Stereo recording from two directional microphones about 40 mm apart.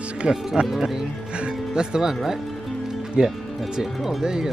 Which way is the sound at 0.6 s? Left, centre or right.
Centre.